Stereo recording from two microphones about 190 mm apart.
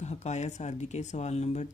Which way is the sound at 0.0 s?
35° left (ahead or behind).